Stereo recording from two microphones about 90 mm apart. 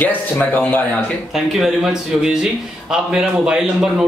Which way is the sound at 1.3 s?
5° right (ahead or behind).